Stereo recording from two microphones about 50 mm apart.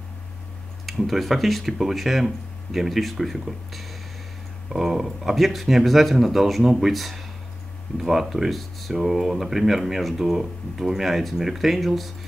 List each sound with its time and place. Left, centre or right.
0.8 s speech: centre